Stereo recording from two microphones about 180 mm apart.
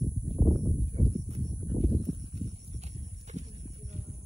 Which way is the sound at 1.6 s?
25° right (ahead or behind).